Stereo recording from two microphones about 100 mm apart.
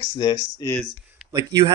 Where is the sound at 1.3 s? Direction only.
40° right (ahead or behind).